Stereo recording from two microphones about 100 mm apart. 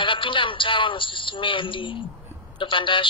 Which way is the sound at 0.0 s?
55° left (ahead or behind).